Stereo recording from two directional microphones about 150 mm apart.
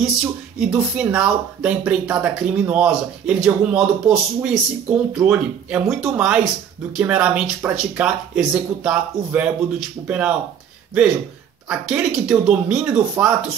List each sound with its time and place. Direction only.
0.0 s speech: 5° right (ahead or behind)
11.7 s speech: 5° right (ahead or behind)